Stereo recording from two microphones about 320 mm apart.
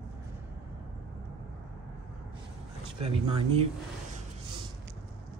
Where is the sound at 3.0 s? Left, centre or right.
Centre.